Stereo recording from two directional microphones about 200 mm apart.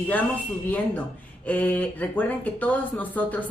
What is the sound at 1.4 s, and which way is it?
A woman's voice, 10° left (ahead or behind).